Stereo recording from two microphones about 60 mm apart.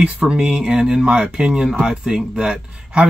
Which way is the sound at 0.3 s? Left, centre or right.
Centre.